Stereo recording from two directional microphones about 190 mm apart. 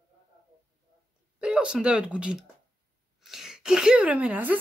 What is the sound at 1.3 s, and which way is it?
Speech, 5° right (ahead or behind).